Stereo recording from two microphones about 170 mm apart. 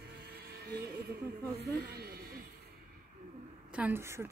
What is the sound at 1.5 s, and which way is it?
Speech, 75° right (ahead or behind).